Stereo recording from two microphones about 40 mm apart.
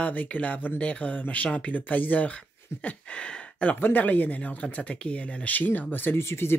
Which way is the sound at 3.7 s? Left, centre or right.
Left.